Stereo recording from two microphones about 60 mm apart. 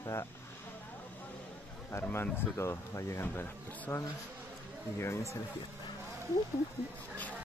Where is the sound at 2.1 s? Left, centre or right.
Left.